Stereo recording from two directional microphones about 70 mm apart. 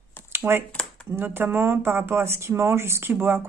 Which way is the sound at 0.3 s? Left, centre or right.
Right.